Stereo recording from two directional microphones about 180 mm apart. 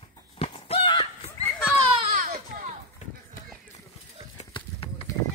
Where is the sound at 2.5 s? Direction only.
40° right (ahead or behind).